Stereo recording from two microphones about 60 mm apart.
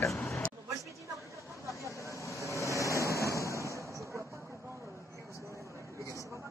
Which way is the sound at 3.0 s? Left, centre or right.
Right.